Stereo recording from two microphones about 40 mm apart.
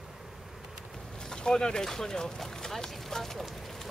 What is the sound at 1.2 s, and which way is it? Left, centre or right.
Boat, centre.